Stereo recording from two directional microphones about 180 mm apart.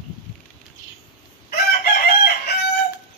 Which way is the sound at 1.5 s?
60° left (ahead or behind).